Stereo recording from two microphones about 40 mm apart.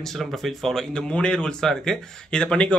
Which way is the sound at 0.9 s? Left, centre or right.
Left.